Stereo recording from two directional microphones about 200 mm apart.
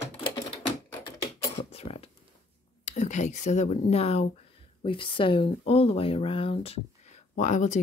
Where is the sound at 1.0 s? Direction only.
25° left (ahead or behind).